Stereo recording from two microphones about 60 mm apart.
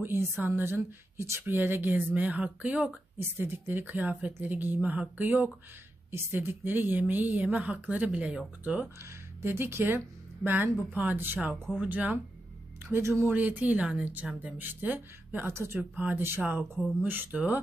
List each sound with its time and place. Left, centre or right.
0.0 s a woman's voice: right
1.1 s speech: right
1.4 s speech: right
3.2 s a woman's voice: right
9.4 s a woman's voice: right
12.9 s speech: right
13.3 s a woman's voice: right
15.8 s a woman's voice: right